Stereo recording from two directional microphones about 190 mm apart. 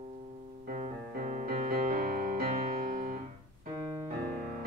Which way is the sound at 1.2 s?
40° right (ahead or behind).